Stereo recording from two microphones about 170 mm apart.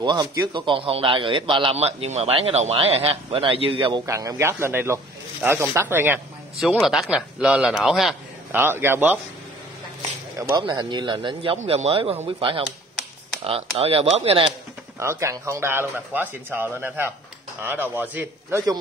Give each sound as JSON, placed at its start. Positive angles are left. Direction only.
{"t": 0.0, "sound": "a man's voice", "side_deg": -25}
{"t": 4.0, "sound": "a man's voice", "side_deg": -20}
{"t": 6.5, "sound": "a man's voice", "side_deg": 0}
{"t": 10.5, "sound": "a man's voice", "side_deg": -25}
{"t": 15.0, "sound": "a man's voice", "side_deg": -15}